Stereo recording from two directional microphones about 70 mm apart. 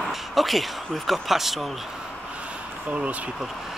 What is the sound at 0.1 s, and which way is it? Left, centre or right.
Speech, centre.